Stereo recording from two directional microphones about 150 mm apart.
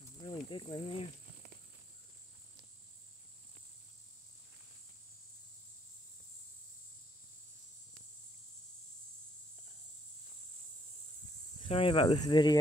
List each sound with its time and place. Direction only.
0.2 s speech: 30° left (ahead or behind)
11.6 s speech: 35° left (ahead or behind)